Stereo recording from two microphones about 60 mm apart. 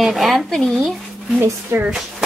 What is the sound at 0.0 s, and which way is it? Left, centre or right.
Speech, centre.